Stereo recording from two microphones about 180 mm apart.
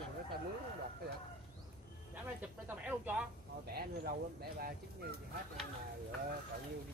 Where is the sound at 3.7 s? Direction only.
60° right (ahead or behind).